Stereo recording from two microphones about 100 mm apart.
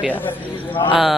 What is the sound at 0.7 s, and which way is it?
Speech, 55° left (ahead or behind).